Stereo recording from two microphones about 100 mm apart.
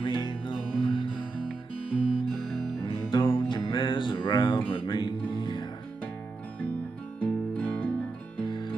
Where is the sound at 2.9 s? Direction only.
55° left (ahead or behind).